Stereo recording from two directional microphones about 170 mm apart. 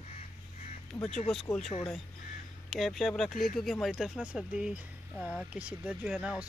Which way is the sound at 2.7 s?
Centre (ahead or behind).